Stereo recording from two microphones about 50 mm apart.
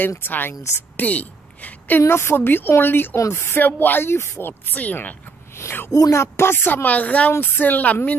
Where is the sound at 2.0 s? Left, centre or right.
Left.